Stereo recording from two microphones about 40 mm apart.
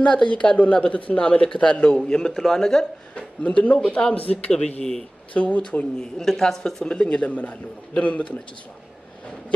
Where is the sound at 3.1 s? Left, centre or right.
Left.